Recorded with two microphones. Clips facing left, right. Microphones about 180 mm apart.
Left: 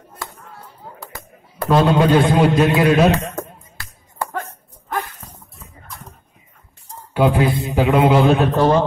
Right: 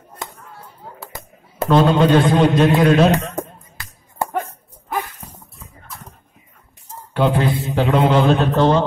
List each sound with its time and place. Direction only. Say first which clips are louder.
0.2 s chop: even; 20° right (ahead or behind)
1.7 s a man's voice: right 1 dB; 10° left (ahead or behind)
3.1 s a sound: even; 20° right (ahead or behind); by 7.5 s 10° left (ahead or behind)
7.6 s a man's voice: left 2 dB; centre (ahead or behind)